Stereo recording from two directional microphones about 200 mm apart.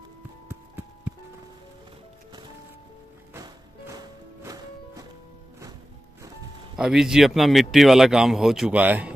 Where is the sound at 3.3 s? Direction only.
15° right (ahead or behind).